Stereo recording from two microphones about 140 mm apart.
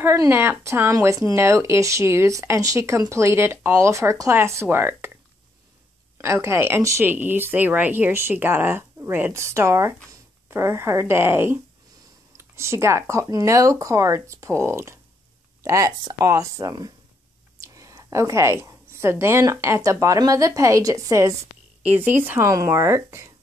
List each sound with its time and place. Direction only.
0.0 s a woman's voice: 20° right (ahead or behind)
21.8 s speech: 15° right (ahead or behind)